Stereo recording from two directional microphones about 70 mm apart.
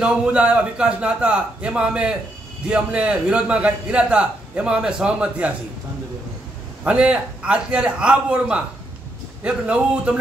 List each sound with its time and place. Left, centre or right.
0.0 s a man's voice: centre
6.8 s a man's voice: centre